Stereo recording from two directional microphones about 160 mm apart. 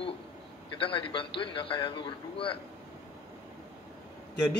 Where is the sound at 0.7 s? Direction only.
30° left (ahead or behind).